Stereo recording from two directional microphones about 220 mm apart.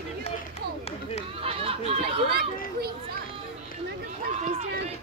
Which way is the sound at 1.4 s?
25° right (ahead or behind).